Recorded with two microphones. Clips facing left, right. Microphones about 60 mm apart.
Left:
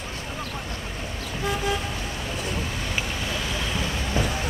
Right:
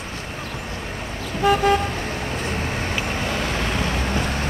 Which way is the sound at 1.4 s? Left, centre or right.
Right.